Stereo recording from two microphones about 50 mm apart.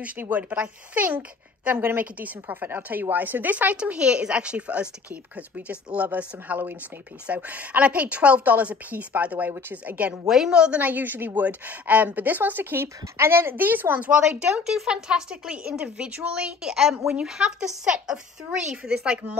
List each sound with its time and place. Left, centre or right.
0.2 s a woman's voice: right
3.7 s a woman's voice: right
9.5 s speech: right
10.2 s speech: centre
10.5 s a woman's voice: centre
10.8 s a woman's voice: right
12.8 s speech: right
13.9 s a woman's voice: right
14.6 s a woman's voice: centre
16.7 s speech: centre